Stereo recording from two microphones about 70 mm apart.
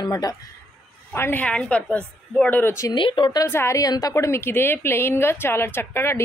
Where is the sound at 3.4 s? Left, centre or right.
Left.